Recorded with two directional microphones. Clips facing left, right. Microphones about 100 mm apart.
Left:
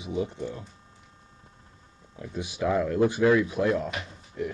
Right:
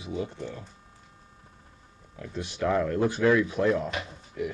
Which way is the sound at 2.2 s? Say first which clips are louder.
Even; 10° left (ahead or behind).